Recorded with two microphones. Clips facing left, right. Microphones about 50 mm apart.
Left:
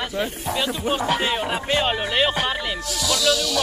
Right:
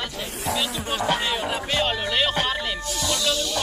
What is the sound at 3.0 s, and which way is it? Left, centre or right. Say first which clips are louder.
Music: left 4 dB; left.